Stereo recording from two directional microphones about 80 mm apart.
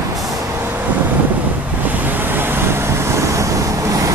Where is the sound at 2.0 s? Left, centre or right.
Right.